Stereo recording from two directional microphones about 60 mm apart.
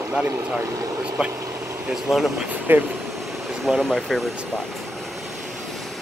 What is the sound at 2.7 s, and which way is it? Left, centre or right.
Speech, right.